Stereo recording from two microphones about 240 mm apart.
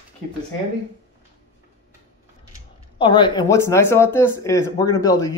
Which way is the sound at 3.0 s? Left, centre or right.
Centre.